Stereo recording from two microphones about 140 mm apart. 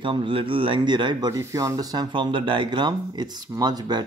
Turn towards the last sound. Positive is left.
turn(degrees=-30)  # may be behind; listen again after turning